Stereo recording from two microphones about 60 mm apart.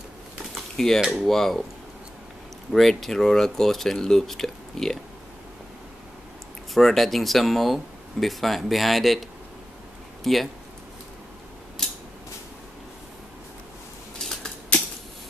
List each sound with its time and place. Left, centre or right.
0.7 s speech: centre
2.7 s speech: centre
6.7 s speech: centre
10.2 s speech: centre
11.8 s a sound: centre
14.2 s a sound: centre